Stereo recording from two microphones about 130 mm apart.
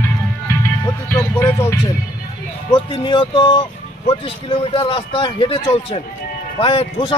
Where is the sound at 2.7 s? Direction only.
40° left (ahead or behind).